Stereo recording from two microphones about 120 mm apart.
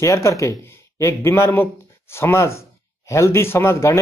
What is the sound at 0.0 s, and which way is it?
Speech, 25° left (ahead or behind).